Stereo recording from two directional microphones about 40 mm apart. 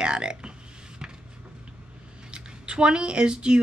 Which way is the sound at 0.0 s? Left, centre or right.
Right.